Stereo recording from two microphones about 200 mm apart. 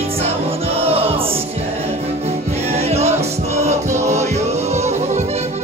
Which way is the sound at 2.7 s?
30° right (ahead or behind).